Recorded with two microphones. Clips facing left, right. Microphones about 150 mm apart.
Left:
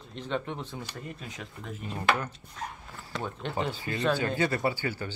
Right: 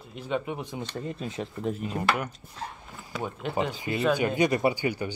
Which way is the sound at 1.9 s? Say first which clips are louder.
Left 4 dB; 10° right (ahead or behind).